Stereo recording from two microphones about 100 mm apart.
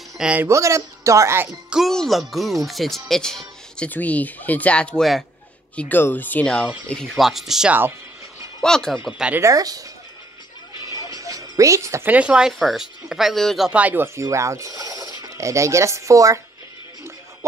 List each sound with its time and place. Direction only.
0.2 s speech: 10° right (ahead or behind)
0.5 s speech: 30° right (ahead or behind)
1.7 s speech: centre (ahead or behind)
5.8 s speech: 20° left (ahead or behind)
7.2 s speech: centre (ahead or behind)
9.4 s speech: 35° right (ahead or behind)
10.9 s music: 35° right (ahead or behind)
12.1 s speech: 10° right (ahead or behind)
13.7 s speech: 15° right (ahead or behind); by 16.3 s 35° right (ahead or behind)